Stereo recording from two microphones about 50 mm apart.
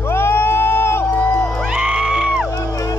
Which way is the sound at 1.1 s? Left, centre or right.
Left.